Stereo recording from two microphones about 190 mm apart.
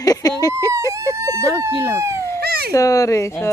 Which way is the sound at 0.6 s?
15° right (ahead or behind).